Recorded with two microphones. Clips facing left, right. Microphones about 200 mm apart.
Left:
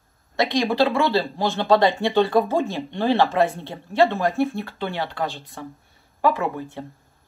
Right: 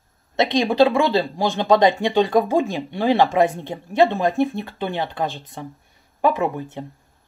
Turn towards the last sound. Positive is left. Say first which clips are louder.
# right 3 dB
turn(degrees=-15)  # may be behind; listen again after turning